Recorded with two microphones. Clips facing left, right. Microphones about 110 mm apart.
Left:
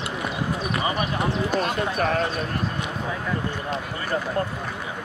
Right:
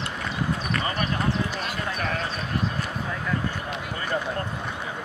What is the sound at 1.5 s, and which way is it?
Speech, 40° left (ahead or behind).